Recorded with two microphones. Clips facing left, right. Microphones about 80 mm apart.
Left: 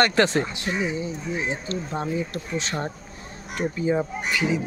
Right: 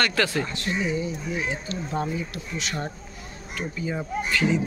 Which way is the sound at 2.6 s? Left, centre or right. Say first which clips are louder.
Left 2 dB; left.